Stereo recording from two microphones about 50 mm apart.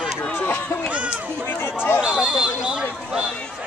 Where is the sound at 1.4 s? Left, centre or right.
Left.